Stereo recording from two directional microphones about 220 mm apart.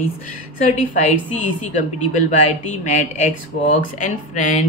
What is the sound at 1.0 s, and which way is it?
A woman's voice, 35° left (ahead or behind).